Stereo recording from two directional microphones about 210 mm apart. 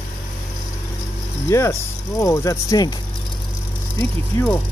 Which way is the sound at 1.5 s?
15° left (ahead or behind).